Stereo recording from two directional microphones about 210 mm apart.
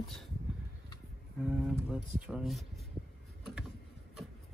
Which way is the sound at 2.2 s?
Centre (ahead or behind).